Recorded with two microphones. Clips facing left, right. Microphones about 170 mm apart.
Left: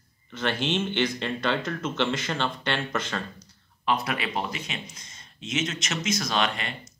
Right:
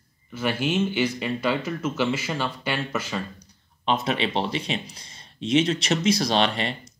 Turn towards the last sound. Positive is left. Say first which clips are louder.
# right 5 dB
turn(degrees=-30)  # may be behind; listen again after turning